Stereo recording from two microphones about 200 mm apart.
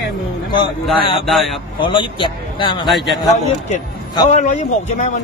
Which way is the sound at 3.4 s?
30° left (ahead or behind).